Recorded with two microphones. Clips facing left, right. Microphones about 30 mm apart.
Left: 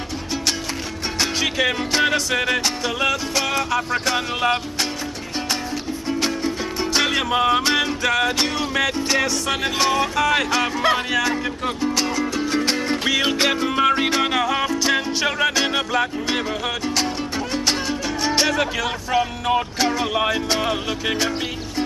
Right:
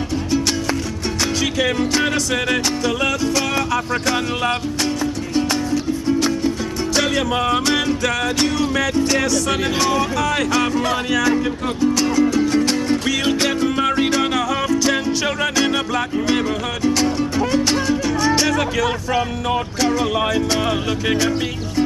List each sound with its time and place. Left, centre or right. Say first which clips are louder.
1.4 s music: right 2 dB; centre
6.0 s music: right 3 dB; centre
7.3 s music: left 3 dB; centre
10.8 s music: even; left
11.1 s music: right 3 dB; centre
16.8 s speech: right 8 dB; centre
17.5 s music: right 3 dB; centre
19.8 s music: right 2 dB; centre